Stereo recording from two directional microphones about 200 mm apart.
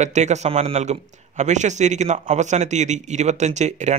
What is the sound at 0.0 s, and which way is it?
A man's voice, 35° right (ahead or behind).